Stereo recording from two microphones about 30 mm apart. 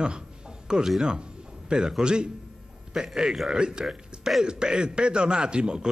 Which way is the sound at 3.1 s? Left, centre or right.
Centre.